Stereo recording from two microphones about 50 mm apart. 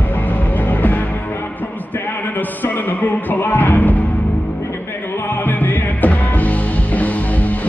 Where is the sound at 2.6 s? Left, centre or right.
Left.